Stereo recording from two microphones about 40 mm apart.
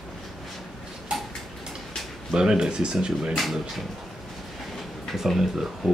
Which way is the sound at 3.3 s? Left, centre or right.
Centre.